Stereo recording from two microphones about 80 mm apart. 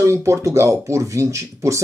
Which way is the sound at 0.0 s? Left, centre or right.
Right.